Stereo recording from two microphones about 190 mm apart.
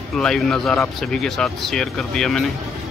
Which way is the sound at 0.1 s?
5° left (ahead or behind).